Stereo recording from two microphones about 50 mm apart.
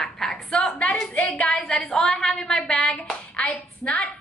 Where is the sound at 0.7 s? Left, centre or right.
Left.